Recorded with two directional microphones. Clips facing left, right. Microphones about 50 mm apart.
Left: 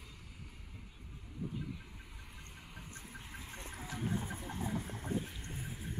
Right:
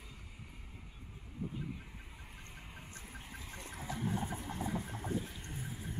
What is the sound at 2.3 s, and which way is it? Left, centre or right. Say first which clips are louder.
Vehicle: right 1 dB; centre.